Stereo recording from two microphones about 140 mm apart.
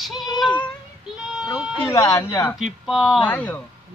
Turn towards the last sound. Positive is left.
turn(degrees=10)  # may be behind; listen again after turning